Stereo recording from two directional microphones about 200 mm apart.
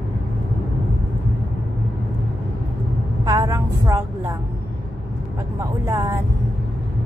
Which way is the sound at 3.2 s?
15° right (ahead or behind).